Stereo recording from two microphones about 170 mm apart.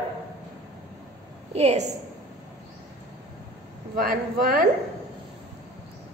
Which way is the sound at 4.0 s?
60° right (ahead or behind).